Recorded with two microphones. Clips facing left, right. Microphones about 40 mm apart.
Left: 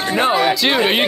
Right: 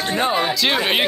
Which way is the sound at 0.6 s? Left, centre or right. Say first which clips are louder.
Left 3 dB; centre.